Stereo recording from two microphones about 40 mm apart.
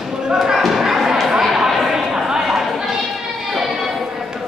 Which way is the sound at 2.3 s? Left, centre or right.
Centre.